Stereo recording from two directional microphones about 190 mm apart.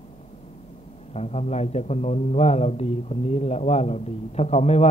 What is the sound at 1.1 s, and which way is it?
A man's voice, 35° left (ahead or behind).